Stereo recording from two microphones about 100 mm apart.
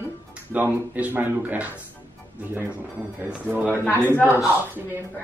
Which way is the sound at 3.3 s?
15° right (ahead or behind).